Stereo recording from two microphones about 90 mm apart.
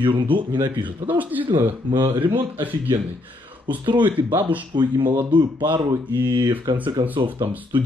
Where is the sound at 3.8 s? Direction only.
60° right (ahead or behind).